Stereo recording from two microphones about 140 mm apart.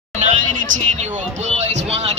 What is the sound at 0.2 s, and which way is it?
A man's voice, 65° right (ahead or behind).